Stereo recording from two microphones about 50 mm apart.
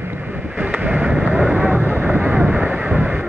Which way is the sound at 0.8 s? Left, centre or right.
Right.